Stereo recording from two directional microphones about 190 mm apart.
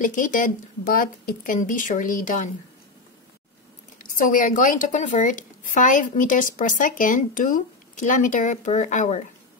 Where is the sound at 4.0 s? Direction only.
45° left (ahead or behind).